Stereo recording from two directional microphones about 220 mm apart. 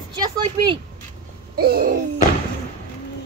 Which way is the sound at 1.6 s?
45° right (ahead or behind).